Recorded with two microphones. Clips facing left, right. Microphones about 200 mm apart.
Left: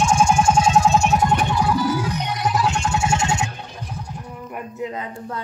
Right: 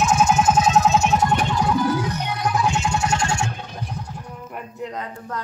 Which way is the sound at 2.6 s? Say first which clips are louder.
Even; 15° right (ahead or behind).